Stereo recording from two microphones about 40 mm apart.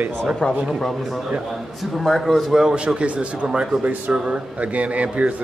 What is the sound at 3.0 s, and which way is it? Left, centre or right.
Speech, right.